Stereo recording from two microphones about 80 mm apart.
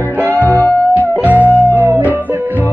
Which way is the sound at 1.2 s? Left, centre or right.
Centre.